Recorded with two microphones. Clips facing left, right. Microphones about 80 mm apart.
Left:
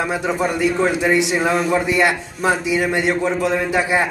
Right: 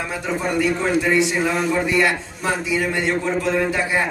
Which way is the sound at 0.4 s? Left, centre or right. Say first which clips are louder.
Left 2 dB; centre.